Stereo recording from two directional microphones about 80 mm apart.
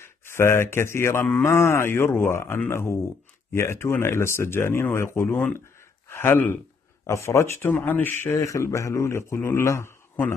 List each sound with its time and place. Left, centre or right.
0.0 s speech: left